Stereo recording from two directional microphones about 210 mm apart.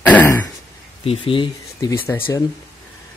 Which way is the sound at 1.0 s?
25° left (ahead or behind).